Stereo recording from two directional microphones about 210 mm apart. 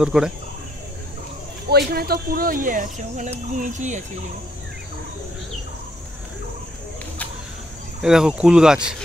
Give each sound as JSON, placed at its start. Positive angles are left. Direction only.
{"t": 0.0, "sound": "speech", "side_deg": -5}
{"t": 1.7, "sound": "speech", "side_deg": -50}
{"t": 8.0, "sound": "speech", "side_deg": -5}